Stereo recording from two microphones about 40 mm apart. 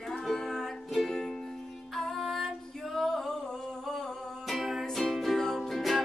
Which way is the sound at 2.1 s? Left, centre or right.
Centre.